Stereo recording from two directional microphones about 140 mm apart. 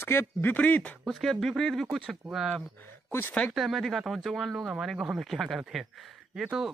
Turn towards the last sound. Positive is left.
turn(degrees=-5)  # may be behind; listen again after turning